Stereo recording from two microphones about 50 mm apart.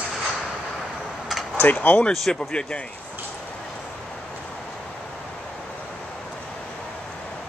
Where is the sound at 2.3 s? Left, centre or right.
Centre.